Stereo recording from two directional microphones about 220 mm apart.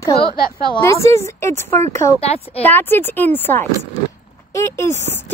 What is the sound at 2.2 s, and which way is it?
Speech, 25° left (ahead or behind).